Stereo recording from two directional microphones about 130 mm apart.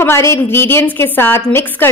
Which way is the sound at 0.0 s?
20° left (ahead or behind).